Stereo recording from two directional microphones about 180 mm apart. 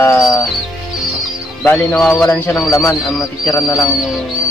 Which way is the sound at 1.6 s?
10° left (ahead or behind).